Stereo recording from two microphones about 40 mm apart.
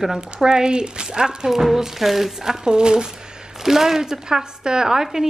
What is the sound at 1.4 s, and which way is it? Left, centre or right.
Speech, centre.